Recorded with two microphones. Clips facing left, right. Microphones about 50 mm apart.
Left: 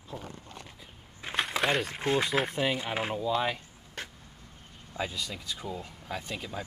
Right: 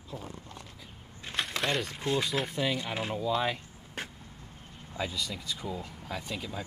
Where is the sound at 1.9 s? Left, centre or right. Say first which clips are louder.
Left 3 dB; left.